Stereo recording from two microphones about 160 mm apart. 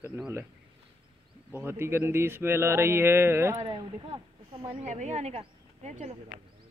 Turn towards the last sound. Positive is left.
turn(degrees=-40)  # may be behind; listen again after turning